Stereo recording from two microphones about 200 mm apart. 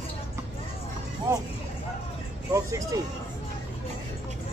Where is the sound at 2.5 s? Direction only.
15° right (ahead or behind).